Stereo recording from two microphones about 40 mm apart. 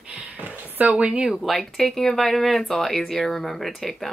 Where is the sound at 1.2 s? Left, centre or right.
Centre.